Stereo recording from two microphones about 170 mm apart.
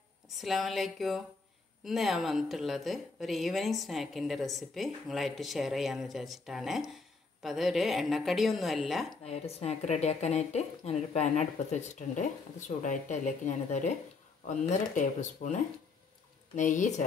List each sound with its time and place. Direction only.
0.4 s a woman's voice: centre (ahead or behind)
9.2 s speech: 40° left (ahead or behind)